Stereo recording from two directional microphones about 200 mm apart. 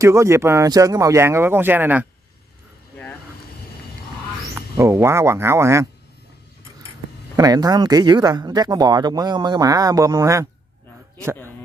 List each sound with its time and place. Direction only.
0.0 s speech: 15° right (ahead or behind)
4.6 s speech: 15° right (ahead or behind)
7.3 s speech: 20° right (ahead or behind)